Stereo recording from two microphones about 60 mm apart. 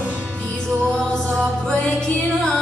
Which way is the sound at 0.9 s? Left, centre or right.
Centre.